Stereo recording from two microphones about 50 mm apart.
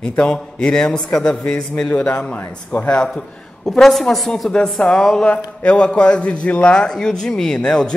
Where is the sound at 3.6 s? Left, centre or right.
Centre.